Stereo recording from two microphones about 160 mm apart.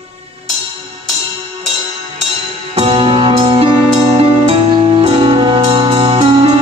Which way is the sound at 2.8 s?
35° right (ahead or behind).